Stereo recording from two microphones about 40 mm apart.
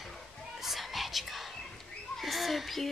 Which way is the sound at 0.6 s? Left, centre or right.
Centre.